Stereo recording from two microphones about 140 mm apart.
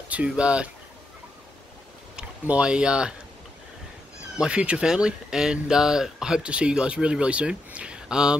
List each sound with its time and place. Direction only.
0.1 s speech: 10° right (ahead or behind)
2.1 s speech: 10° right (ahead or behind)
4.4 s speech: 10° right (ahead or behind)